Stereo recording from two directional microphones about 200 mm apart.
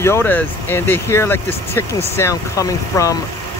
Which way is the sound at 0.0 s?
10° left (ahead or behind).